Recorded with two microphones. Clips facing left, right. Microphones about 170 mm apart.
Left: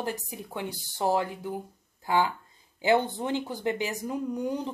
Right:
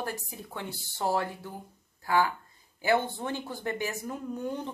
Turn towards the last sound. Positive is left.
turn(degrees=15)  # may be behind; listen again after turning